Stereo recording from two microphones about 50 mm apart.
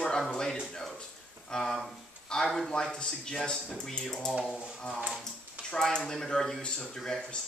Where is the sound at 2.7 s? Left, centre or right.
Centre.